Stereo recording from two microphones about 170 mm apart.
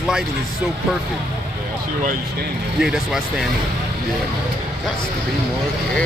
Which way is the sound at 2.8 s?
5° right (ahead or behind).